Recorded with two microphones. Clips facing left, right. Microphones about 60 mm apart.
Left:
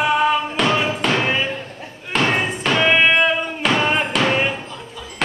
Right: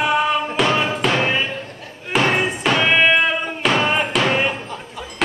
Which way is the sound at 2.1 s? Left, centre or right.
Centre.